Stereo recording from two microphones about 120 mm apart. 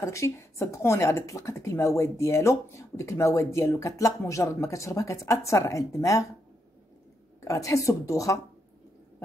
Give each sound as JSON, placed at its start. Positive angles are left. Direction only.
{"t": 0.0, "sound": "speech", "side_deg": 25}
{"t": 7.4, "sound": "speech", "side_deg": 25}